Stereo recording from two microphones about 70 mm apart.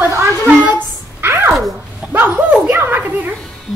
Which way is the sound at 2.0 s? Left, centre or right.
Right.